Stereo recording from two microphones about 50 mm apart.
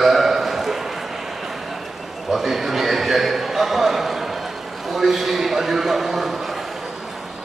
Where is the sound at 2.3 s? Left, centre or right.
Centre.